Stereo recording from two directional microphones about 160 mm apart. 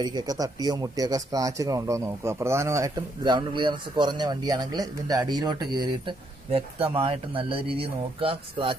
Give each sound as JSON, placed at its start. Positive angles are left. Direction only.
{"t": 0.0, "sound": "speech", "side_deg": -25}